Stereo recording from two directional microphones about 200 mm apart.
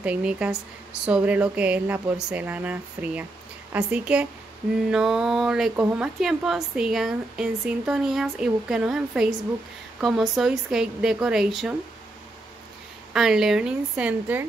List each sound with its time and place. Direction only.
0.0 s speech: 5° right (ahead or behind)
13.1 s speech: centre (ahead or behind)